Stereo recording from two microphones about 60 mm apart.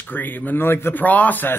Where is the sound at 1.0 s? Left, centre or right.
Left.